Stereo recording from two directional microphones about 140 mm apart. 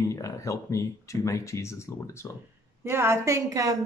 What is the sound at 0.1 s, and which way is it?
Speech, 20° left (ahead or behind).